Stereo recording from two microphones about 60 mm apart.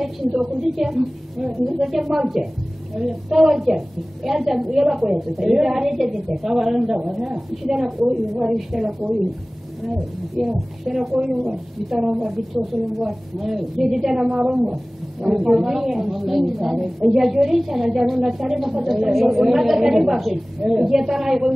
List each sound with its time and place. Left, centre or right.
0.0 s a woman's voice: centre
8.1 s a man's voice: centre